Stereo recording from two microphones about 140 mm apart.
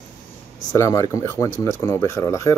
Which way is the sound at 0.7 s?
25° left (ahead or behind).